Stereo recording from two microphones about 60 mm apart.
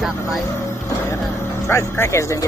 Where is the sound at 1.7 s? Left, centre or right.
Left.